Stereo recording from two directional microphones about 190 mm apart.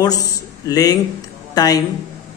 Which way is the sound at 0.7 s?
20° left (ahead or behind).